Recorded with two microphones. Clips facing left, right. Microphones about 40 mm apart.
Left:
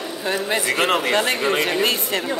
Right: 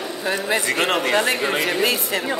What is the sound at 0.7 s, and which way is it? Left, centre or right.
Speech, centre.